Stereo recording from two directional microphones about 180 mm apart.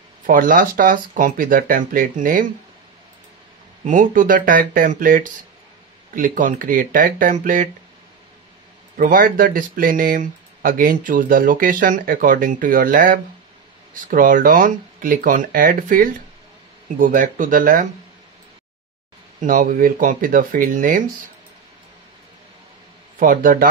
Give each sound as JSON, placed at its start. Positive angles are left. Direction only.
{"t": 0.3, "sound": "speech", "side_deg": -50}
{"t": 3.8, "sound": "speech", "side_deg": -45}
{"t": 8.9, "sound": "speech", "side_deg": -45}
{"t": 19.4, "sound": "speech", "side_deg": -50}
{"t": 23.1, "sound": "speech", "side_deg": -50}